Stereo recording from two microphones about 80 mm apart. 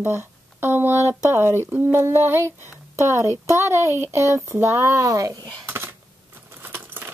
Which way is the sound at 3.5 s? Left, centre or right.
Right.